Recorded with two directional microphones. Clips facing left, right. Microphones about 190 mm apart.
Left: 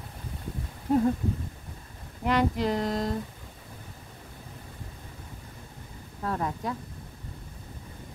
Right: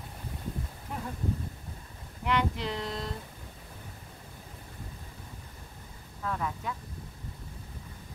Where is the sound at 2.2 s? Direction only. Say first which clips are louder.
Left 5 dB; 40° left (ahead or behind).